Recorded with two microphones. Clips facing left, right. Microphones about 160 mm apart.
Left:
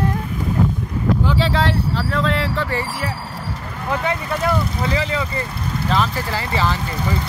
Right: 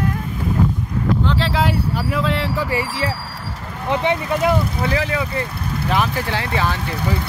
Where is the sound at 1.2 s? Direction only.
Centre (ahead or behind).